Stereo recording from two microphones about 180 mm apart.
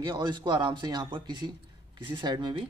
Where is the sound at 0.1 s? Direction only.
25° right (ahead or behind).